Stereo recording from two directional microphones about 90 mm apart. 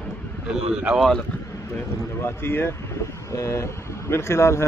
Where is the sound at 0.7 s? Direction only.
10° right (ahead or behind).